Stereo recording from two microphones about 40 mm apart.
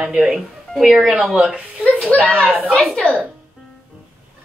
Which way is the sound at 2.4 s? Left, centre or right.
Right.